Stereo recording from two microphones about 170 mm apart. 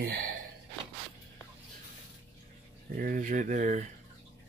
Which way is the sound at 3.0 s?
50° right (ahead or behind).